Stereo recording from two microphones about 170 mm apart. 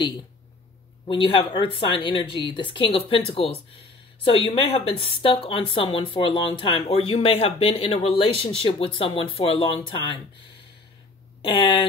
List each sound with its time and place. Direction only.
1.0 s a woman's voice: 30° left (ahead or behind)
11.4 s speech: 30° left (ahead or behind)